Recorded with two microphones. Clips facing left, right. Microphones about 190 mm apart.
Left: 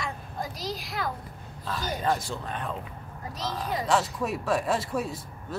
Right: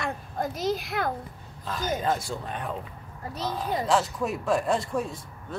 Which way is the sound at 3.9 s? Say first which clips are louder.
Even; centre (ahead or behind).